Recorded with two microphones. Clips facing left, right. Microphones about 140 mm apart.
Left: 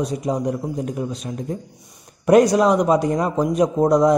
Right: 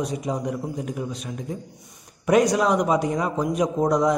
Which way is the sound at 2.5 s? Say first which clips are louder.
Left 4 dB; 35° left (ahead or behind).